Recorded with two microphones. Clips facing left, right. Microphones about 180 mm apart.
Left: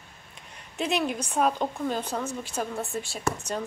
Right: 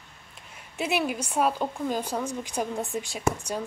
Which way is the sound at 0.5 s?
10° right (ahead or behind).